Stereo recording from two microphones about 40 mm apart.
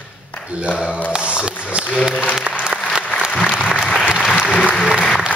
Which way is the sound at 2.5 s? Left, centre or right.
Right.